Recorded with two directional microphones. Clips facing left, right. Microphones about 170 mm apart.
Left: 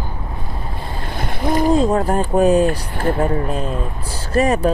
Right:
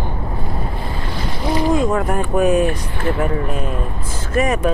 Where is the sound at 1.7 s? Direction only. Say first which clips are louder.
Left 2 dB; 30° left (ahead or behind).